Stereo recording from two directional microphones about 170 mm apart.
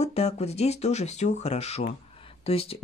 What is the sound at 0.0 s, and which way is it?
Speech, 40° left (ahead or behind).